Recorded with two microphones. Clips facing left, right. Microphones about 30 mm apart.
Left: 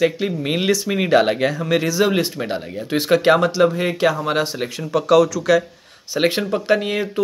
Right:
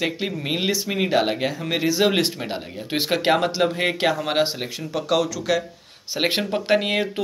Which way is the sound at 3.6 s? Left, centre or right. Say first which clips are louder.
Left 3 dB; right.